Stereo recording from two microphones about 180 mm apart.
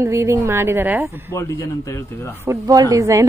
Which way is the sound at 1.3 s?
15° left (ahead or behind).